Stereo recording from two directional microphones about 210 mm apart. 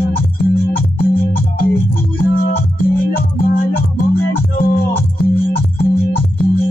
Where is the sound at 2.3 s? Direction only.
45° left (ahead or behind).